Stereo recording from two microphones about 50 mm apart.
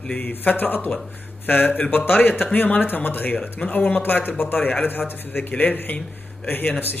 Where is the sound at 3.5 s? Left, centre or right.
Left.